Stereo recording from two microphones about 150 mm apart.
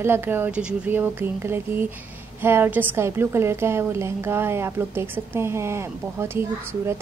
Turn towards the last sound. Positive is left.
turn(degrees=-15)  # may be behind; listen again after turning